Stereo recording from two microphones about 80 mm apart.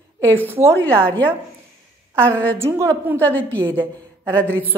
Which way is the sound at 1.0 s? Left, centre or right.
Centre.